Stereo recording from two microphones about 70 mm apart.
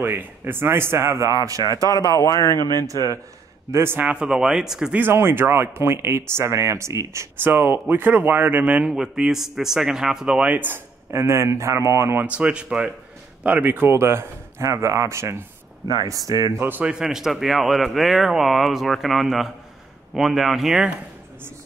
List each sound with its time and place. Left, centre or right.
0.0 s speech: right
1.3 s speech: right
2.0 s a man's voice: left
2.4 s speech: left
3.7 s speech: right
4.0 s a man's voice: centre
5.1 s speech: right
7.4 s a man's voice: right
11.1 s speech: right
12.2 s a man's voice: centre
13.4 s speech: right
15.9 s speech: right
16.5 s speech: right
16.8 s speech: centre